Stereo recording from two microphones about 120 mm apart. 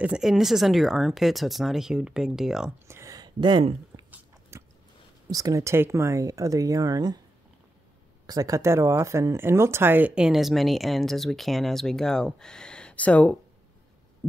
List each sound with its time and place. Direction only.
0.0 s speech: 5° right (ahead or behind)
2.9 s a sound: 25° right (ahead or behind)
4.1 s biting: 20° right (ahead or behind)
5.3 s speech: 30° right (ahead or behind)
8.3 s speech: 30° right (ahead or behind); by 13.4 s 10° left (ahead or behind)